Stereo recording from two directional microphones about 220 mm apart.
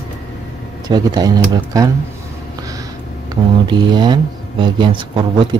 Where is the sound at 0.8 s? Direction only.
20° right (ahead or behind).